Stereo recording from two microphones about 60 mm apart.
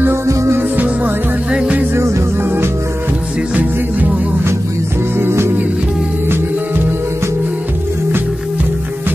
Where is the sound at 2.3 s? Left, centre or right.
Right.